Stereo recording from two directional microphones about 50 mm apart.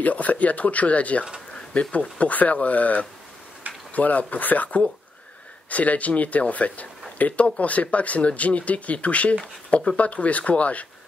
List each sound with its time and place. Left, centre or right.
0.0 s speech: left